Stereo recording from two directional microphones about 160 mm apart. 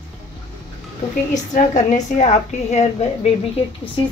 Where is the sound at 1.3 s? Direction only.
50° left (ahead or behind).